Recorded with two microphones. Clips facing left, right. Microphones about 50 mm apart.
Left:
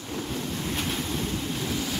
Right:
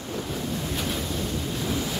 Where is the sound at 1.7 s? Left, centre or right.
Centre.